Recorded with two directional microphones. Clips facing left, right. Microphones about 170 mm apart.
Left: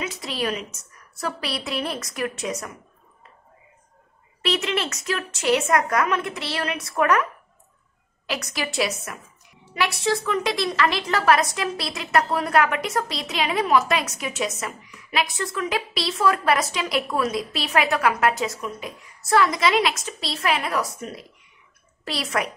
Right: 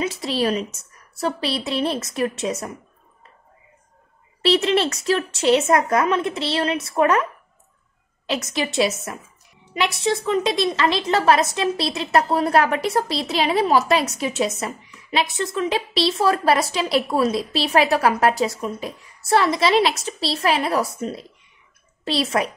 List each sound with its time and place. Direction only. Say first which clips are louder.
0.0 s a woman's voice: right 5 dB; 30° right (ahead or behind)
4.4 s a woman's voice: right 7 dB; 30° right (ahead or behind)
8.3 s a woman's voice: right 5 dB; 25° right (ahead or behind)